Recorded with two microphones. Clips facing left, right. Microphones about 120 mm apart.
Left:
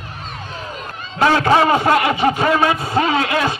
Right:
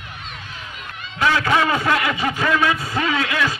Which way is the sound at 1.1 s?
35° left (ahead or behind).